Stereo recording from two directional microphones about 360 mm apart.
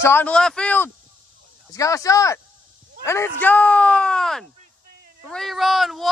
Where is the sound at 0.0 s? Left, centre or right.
Centre.